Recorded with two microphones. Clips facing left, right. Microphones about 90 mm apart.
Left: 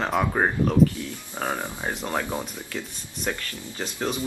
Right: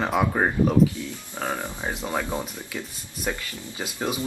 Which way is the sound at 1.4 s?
10° left (ahead or behind).